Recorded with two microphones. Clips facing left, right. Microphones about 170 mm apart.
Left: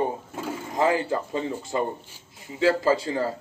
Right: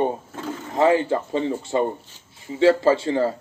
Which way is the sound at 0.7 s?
30° right (ahead or behind).